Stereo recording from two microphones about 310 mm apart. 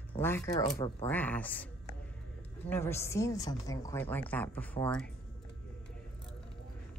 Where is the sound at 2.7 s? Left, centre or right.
Centre.